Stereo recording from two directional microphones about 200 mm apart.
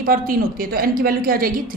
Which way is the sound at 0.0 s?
45° right (ahead or behind).